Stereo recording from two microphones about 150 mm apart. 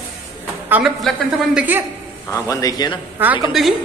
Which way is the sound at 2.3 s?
20° left (ahead or behind).